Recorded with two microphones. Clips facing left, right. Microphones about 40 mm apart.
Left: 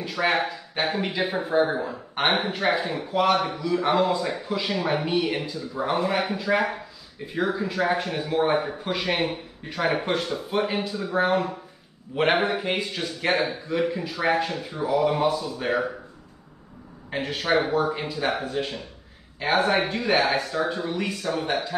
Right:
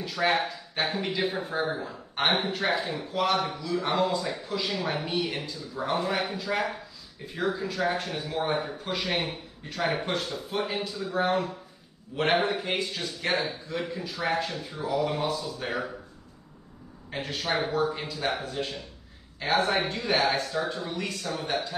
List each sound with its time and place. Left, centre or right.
0.0 s speech: centre
1.5 s speech: left
14.7 s speech: centre
17.1 s speech: left
19.9 s speech: left
20.8 s speech: centre